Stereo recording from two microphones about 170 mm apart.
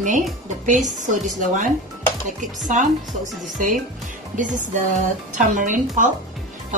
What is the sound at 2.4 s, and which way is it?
Speech, 45° right (ahead or behind).